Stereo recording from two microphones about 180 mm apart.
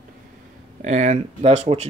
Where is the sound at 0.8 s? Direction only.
45° right (ahead or behind).